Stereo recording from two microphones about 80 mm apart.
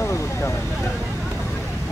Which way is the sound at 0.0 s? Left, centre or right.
Left.